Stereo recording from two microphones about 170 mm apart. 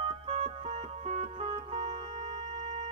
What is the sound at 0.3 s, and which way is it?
Music, 40° right (ahead or behind).